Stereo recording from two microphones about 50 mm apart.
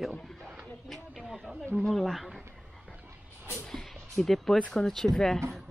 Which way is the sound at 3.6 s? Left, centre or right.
Centre.